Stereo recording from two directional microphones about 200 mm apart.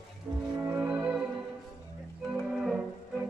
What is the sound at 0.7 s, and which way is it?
Music, 10° right (ahead or behind).